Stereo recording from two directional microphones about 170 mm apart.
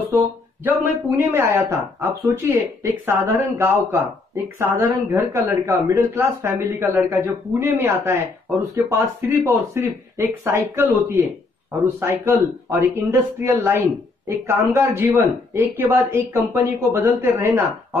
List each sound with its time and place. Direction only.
0.7 s speech: 10° right (ahead or behind)